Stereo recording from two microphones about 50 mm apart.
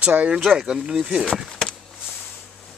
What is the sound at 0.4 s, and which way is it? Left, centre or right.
Speech, centre.